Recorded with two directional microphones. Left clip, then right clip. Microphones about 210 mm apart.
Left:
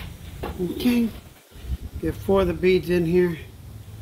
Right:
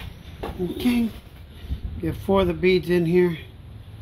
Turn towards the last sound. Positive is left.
turn(degrees=-45)  # may be behind; listen again after turning